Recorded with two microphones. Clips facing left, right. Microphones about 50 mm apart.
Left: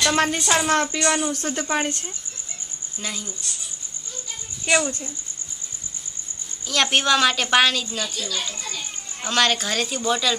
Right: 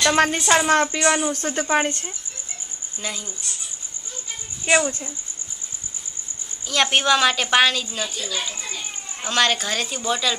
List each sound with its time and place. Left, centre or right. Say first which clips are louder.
0.0 s a woman's voice: right 2 dB; centre
3.0 s a woman's voice: right 1 dB; centre
4.6 s a woman's voice: right 2 dB; centre
6.7 s a woman's voice: right 1 dB; centre
8.0 s speech: right 1 dB; centre
8.5 s children playing: even; centre
9.2 s a woman's voice: even; centre